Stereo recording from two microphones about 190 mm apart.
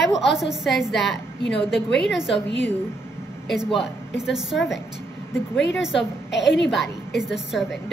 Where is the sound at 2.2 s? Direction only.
70° left (ahead or behind).